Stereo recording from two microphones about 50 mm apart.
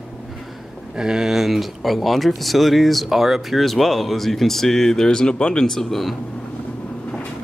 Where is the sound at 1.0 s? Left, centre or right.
Centre.